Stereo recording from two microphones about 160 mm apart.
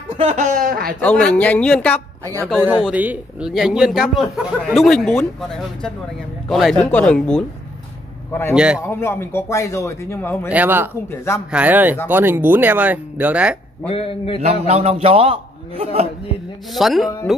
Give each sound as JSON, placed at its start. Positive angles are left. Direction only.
{"t": 0.2, "sound": "speech", "side_deg": -45}
{"t": 1.0, "sound": "a man's voice", "side_deg": 10}
{"t": 2.6, "sound": "a man's voice", "side_deg": -10}
{"t": 6.5, "sound": "a man's voice", "side_deg": 5}
{"t": 8.5, "sound": "speech", "side_deg": -5}
{"t": 8.8, "sound": "a man's voice", "side_deg": 15}
{"t": 10.5, "sound": "speech", "side_deg": -10}
{"t": 11.1, "sound": "a man's voice", "side_deg": 15}
{"t": 11.5, "sound": "speech", "side_deg": -10}
{"t": 13.8, "sound": "a man's voice", "side_deg": 35}
{"t": 14.7, "sound": "a man's voice", "side_deg": -40}
{"t": 16.7, "sound": "a man's voice", "side_deg": 0}